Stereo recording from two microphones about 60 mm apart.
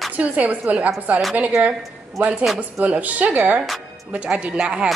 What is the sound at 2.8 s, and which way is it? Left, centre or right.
A woman's voice, right.